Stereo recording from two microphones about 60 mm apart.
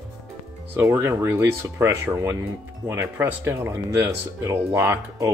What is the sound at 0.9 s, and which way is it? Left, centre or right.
Speech, right.